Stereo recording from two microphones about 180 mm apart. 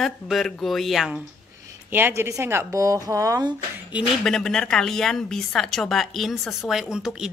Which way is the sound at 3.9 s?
5° left (ahead or behind).